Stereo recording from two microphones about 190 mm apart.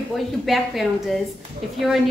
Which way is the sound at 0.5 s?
Centre (ahead or behind).